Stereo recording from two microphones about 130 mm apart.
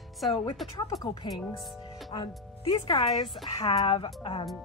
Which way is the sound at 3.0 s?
30° left (ahead or behind).